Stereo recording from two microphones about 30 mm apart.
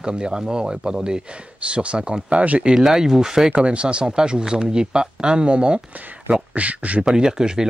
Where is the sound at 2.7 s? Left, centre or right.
Centre.